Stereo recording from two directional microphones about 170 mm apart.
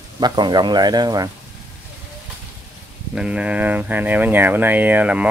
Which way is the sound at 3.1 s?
5° right (ahead or behind).